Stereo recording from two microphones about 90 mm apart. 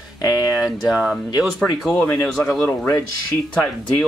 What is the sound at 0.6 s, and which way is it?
Speech, 5° right (ahead or behind).